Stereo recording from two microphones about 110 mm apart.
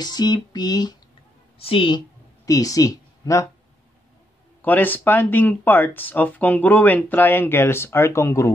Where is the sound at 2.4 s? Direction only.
30° left (ahead or behind).